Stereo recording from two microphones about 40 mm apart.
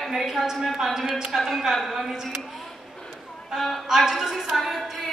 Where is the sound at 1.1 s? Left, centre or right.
Centre.